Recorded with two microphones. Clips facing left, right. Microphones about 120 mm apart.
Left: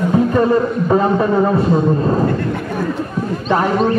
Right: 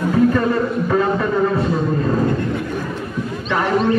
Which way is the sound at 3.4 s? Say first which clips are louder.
Left 2 dB; 40° left (ahead or behind).